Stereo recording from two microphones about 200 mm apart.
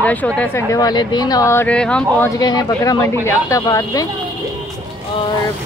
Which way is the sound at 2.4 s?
20° left (ahead or behind).